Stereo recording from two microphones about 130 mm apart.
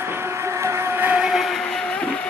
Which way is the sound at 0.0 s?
20° right (ahead or behind).